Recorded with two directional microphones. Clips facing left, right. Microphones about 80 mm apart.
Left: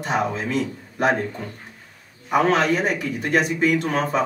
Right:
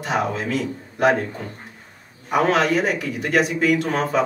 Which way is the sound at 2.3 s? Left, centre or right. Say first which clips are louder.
Even; centre.